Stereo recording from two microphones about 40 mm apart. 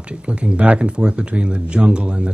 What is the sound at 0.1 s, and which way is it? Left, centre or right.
Speech, right.